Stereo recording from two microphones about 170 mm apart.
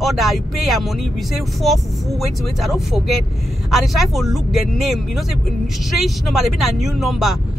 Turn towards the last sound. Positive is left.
turn(degrees=0)  # may be behind; listen again after turning